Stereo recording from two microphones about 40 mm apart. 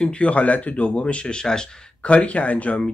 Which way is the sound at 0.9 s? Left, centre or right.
Left.